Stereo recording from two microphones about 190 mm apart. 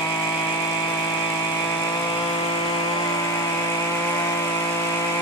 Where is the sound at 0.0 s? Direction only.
20° left (ahead or behind).